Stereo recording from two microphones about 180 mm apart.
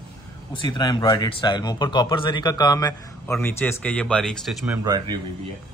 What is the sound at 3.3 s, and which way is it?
Speech, 10° left (ahead or behind).